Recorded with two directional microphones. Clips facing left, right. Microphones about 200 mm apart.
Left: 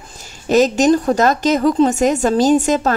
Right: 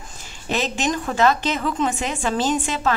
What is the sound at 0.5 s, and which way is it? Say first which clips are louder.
A woman's voice: left 11 dB; 40° left (ahead or behind).